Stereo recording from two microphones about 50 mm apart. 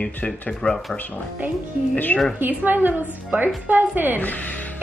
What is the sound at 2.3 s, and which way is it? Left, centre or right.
Speech, right.